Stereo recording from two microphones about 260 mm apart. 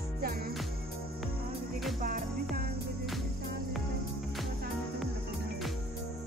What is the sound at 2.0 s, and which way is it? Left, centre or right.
Music, right.